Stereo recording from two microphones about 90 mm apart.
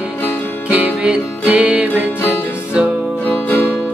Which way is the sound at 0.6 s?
15° right (ahead or behind).